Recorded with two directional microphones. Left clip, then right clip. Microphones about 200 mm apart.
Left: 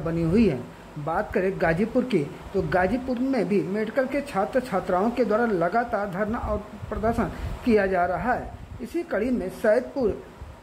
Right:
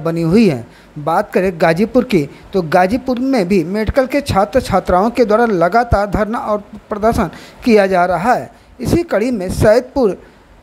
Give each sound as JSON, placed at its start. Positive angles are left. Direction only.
{"t": 0.0, "sound": "speech", "side_deg": -25}